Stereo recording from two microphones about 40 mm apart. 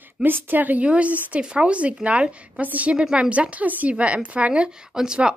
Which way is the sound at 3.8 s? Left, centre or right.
Right.